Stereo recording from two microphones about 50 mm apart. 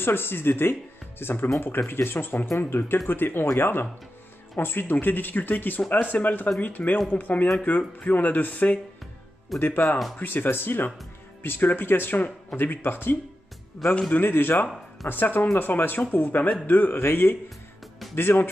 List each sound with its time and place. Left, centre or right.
0.0 s speech: left
9.6 s speech: left